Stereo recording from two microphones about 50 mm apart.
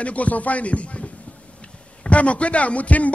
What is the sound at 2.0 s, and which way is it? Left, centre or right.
A man's voice, left.